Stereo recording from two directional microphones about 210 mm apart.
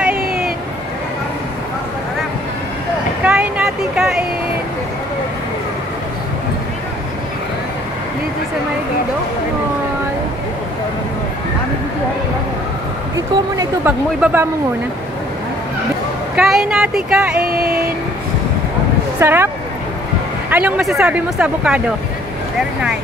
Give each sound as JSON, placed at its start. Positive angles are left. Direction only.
{"t": 0.1, "sound": "vehicle", "side_deg": -45}
{"t": 3.3, "sound": "a sound", "side_deg": -5}
{"t": 13.1, "sound": "speech", "side_deg": -10}
{"t": 16.3, "sound": "speech", "side_deg": -5}
{"t": 17.4, "sound": "a sound", "side_deg": -45}
{"t": 19.1, "sound": "speech", "side_deg": -10}
{"t": 22.6, "sound": "vehicle", "side_deg": -5}